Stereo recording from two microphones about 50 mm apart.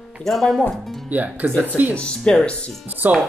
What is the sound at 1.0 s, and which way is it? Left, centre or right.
Speech, right.